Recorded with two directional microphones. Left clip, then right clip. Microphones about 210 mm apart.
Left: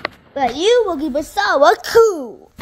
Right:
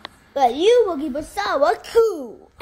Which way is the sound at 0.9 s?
30° left (ahead or behind).